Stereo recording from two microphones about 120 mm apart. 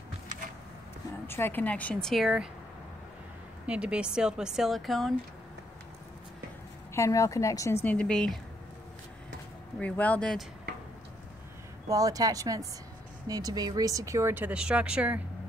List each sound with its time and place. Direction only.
1.2 s speech: 20° left (ahead or behind); by 2.4 s centre (ahead or behind)
3.6 s a woman's voice: 10° right (ahead or behind)
6.9 s a woman's voice: 25° left (ahead or behind); by 8.4 s 5° left (ahead or behind)
9.8 s speech: 10° left (ahead or behind)
11.9 s speech: 30° right (ahead or behind); by 15.2 s 10° right (ahead or behind)